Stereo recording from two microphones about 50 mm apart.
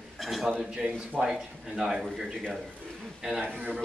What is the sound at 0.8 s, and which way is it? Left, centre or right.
Speech, right.